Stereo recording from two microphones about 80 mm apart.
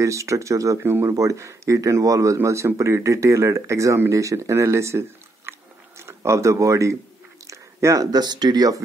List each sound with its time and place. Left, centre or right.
0.0 s speech: right
7.4 s chewing: right
8.1 s speech: right